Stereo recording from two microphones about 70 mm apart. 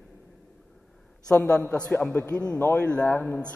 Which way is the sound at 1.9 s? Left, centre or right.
Left.